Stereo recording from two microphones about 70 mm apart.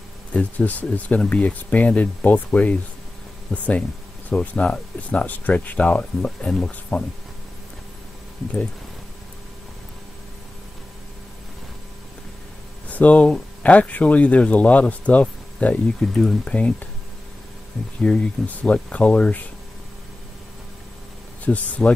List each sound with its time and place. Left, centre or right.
0.3 s speech: left
12.8 s speech: left
16.0 s speech: centre
18.0 s speech: centre
21.5 s speech: centre